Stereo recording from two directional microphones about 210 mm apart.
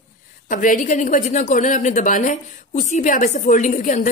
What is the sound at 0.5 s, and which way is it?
A woman's voice, 40° left (ahead or behind).